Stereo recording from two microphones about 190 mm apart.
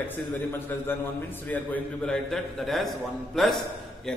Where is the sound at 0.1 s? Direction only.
10° left (ahead or behind).